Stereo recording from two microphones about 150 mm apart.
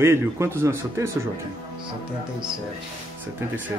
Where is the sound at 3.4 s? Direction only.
20° right (ahead or behind).